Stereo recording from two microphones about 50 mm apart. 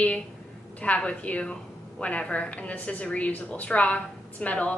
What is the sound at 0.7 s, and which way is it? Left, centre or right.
A woman's voice, left.